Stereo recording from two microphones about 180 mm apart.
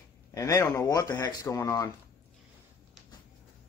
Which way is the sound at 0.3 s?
15° left (ahead or behind).